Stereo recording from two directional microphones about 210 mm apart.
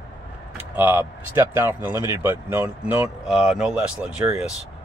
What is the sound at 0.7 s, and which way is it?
Speech, 10° right (ahead or behind).